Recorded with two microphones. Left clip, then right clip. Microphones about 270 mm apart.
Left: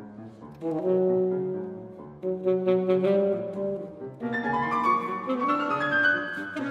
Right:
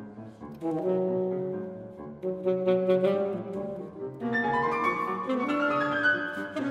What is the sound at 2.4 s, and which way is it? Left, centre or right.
Music, centre.